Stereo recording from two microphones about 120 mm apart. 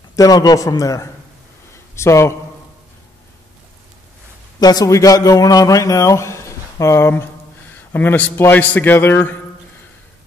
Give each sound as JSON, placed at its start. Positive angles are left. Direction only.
{"t": 0.1, "sound": "a man's voice", "side_deg": 30}
{"t": 4.6, "sound": "a man's voice", "side_deg": 30}